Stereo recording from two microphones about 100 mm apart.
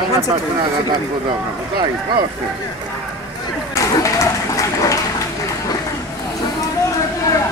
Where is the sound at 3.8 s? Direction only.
35° left (ahead or behind).